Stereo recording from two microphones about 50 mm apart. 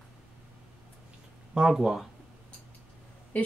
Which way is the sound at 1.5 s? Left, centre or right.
Centre.